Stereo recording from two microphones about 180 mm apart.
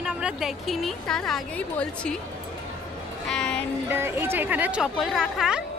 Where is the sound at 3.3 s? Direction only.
5° left (ahead or behind).